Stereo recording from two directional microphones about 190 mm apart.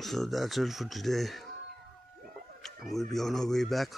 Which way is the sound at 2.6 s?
Centre (ahead or behind).